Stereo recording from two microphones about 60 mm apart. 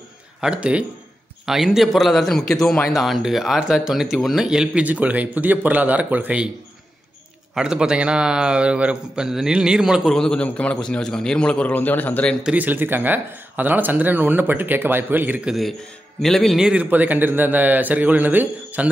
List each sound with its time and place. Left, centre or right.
0.4 s a man's voice: centre
1.4 s a man's voice: centre
4.8 s a man's voice: right
7.5 s a man's voice: centre
9.2 s a man's voice: centre
10.0 s a man's voice: centre; by 12.3 s left
12.5 s speech: right
16.2 s speech: centre
16.7 s a man's voice: right